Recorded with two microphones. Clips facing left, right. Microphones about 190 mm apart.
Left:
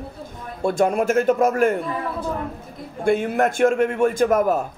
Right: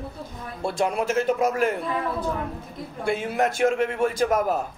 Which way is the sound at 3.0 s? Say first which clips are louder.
Left 5 dB; 50° left (ahead or behind).